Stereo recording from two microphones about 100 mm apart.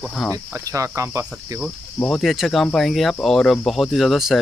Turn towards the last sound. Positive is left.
turn(degrees=0)  # may be behind; listen again after turning